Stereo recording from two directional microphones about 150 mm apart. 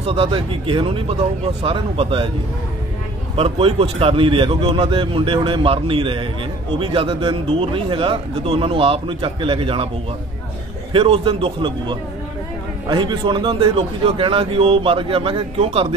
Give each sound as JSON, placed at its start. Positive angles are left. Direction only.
{"t": 0.0, "sound": "speech", "side_deg": -40}
{"t": 3.3, "sound": "speech", "side_deg": -40}
{"t": 10.9, "sound": "speech", "side_deg": -35}